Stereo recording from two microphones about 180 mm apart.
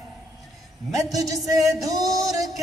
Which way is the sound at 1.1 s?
20° right (ahead or behind).